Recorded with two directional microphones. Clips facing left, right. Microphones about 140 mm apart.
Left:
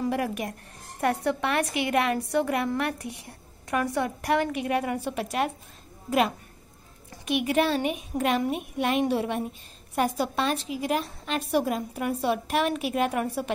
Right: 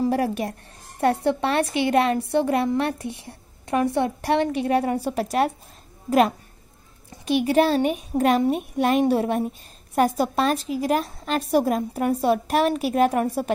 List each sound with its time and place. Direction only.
0.0 s a woman's voice: 35° right (ahead or behind)